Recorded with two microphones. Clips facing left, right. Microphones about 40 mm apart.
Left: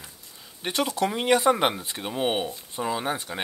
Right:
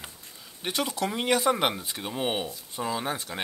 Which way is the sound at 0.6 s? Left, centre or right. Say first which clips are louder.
Left 3 dB; centre.